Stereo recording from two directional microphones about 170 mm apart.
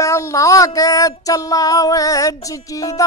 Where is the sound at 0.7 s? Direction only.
20° left (ahead or behind).